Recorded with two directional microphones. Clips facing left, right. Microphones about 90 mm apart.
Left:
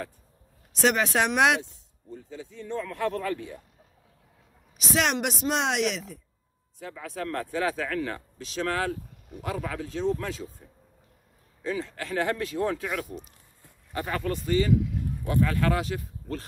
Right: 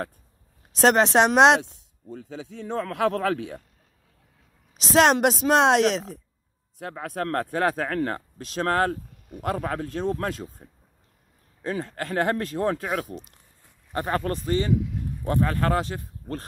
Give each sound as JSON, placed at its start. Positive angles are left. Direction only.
{"t": 0.8, "sound": "speech", "side_deg": -30}
{"t": 1.5, "sound": "speech", "side_deg": -85}
{"t": 4.9, "sound": "speech", "side_deg": -35}
{"t": 6.8, "sound": "speech", "side_deg": -60}
{"t": 11.6, "sound": "speech", "side_deg": -45}